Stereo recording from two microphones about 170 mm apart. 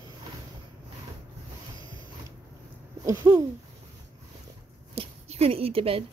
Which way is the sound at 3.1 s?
25° right (ahead or behind).